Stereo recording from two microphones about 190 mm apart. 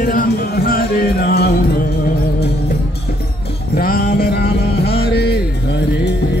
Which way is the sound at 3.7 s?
55° left (ahead or behind).